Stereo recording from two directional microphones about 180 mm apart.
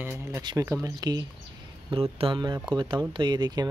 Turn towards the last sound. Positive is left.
turn(degrees=-25)  # may be behind; listen again after turning